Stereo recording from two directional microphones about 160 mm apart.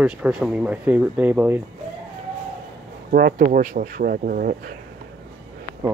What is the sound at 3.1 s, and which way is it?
Speech, 65° right (ahead or behind).